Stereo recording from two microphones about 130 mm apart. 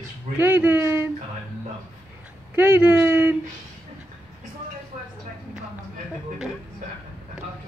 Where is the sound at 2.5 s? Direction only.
15° right (ahead or behind).